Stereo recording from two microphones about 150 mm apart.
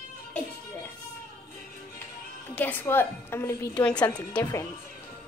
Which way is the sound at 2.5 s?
10° left (ahead or behind).